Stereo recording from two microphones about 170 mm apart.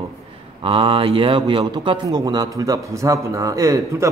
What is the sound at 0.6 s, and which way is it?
A man's voice, 30° right (ahead or behind).